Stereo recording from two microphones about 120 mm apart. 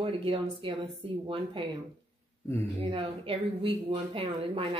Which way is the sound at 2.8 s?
50° right (ahead or behind).